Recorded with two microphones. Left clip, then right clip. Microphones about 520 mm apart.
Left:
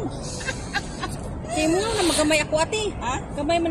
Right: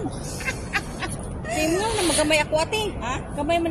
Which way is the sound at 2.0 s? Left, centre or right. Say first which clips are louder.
Right 2 dB; right.